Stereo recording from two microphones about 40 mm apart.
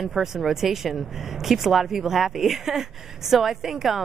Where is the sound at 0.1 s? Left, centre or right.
Centre.